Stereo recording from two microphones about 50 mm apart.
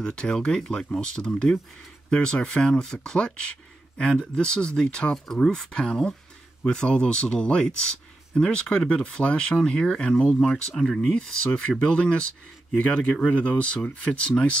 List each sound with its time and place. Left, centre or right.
0.0 s speech: centre
10.5 s speech: centre
11.1 s speech: centre